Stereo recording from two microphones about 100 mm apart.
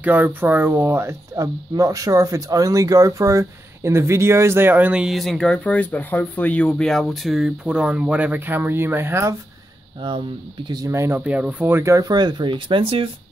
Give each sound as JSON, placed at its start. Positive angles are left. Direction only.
{"t": 0.0, "sound": "speech", "side_deg": -15}
{"t": 5.0, "sound": "speech", "side_deg": 0}
{"t": 10.0, "sound": "speech", "side_deg": -50}
{"t": 10.9, "sound": "speech", "side_deg": -25}
{"t": 12.1, "sound": "speech", "side_deg": -50}